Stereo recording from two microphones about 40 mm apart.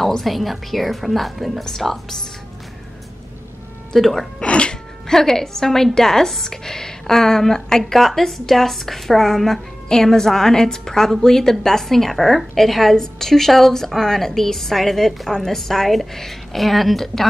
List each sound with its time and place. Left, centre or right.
0.0 s a woman's voice: centre
3.9 s a woman's voice: centre
4.4 s speech: left
5.0 s a woman's voice: centre